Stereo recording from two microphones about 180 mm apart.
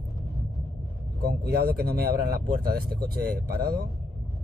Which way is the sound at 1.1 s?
60° right (ahead or behind).